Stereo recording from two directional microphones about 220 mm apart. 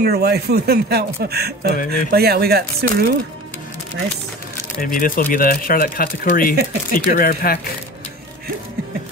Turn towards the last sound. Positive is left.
turn(degrees=40)  # may be behind; listen again after turning